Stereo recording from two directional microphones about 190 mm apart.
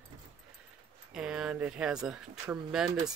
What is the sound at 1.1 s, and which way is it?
Speech, 5° right (ahead or behind).